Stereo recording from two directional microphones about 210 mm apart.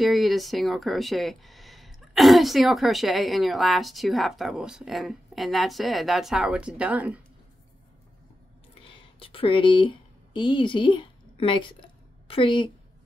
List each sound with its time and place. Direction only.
0.0 s speech: centre (ahead or behind)
8.8 s speech: 25° left (ahead or behind)